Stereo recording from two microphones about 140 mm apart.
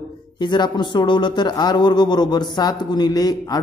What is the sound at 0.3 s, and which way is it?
Speech, 30° left (ahead or behind).